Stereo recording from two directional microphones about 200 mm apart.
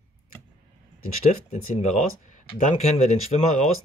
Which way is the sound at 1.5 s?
35° left (ahead or behind).